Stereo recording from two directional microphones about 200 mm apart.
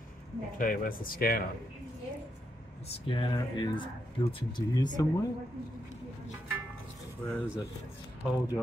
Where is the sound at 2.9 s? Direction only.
25° left (ahead or behind).